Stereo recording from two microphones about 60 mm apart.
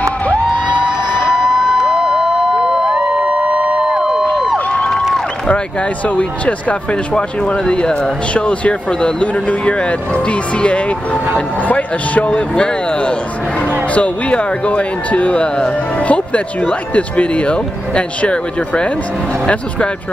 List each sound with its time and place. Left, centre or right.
0.0 s a sound: left
1.3 s crowd: centre
4.6 s crowd: centre
6.0 s speech: left